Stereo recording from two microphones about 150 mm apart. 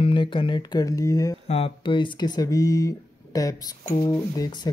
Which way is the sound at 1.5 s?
35° left (ahead or behind).